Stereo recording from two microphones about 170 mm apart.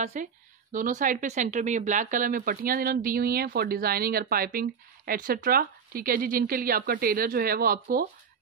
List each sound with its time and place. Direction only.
0.0 s speech: 45° right (ahead or behind); by 8.1 s 60° right (ahead or behind)